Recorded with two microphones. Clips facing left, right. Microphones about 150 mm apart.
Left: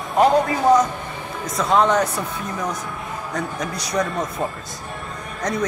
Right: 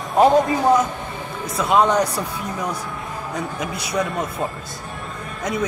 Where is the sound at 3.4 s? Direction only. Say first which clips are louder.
Left 1 dB; centre (ahead or behind).